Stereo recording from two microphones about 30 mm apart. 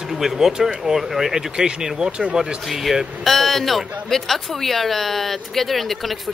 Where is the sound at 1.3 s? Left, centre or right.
Right.